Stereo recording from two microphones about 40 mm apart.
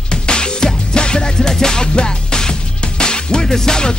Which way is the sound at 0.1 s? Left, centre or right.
Left.